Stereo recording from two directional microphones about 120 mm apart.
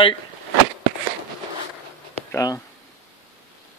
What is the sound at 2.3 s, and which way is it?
Speech, 30° left (ahead or behind).